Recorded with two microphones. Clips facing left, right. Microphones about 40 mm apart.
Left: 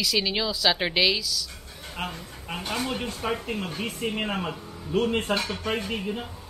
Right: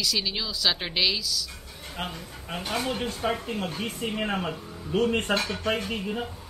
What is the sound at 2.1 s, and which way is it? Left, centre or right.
Speech, centre.